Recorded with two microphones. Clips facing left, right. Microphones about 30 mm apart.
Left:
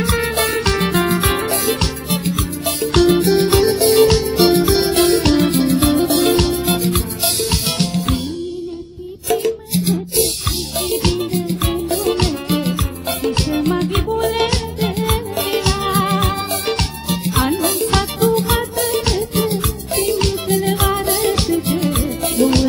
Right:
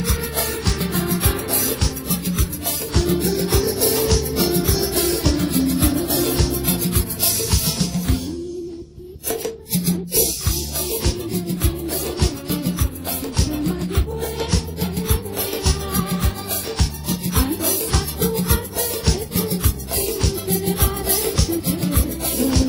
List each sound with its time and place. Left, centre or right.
0.0 s music: left
9.3 s music: left
14.1 s music: left